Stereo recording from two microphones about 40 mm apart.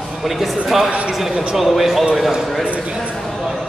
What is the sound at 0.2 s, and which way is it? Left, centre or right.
A man's voice, centre.